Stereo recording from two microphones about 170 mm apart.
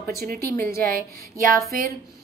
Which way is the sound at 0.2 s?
65° right (ahead or behind).